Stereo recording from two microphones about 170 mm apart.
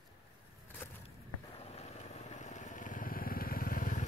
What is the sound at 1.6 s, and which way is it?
Vehicle, 40° left (ahead or behind).